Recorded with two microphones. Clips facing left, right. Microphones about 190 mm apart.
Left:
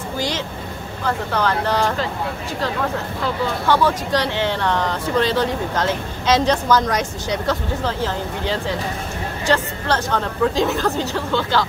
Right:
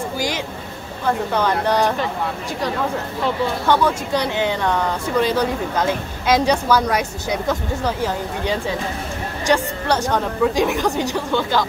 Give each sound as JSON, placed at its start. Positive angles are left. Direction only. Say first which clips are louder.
{"t": 1.0, "sound": "speech", "louder": "right 2 dB", "side_deg": -20}
{"t": 3.6, "sound": "speech", "louder": "left 1 dB", "side_deg": -15}